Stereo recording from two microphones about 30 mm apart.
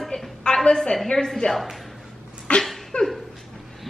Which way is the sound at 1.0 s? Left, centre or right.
Centre.